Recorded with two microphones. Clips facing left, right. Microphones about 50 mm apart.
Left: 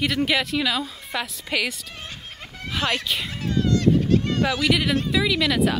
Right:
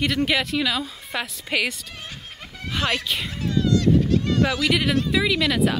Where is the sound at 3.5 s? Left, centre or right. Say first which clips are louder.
Even; left.